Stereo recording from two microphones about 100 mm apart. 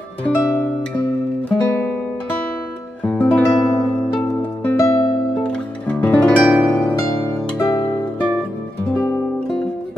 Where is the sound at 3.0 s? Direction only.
10° left (ahead or behind).